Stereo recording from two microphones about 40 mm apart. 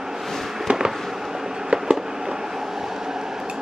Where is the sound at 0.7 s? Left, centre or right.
Centre.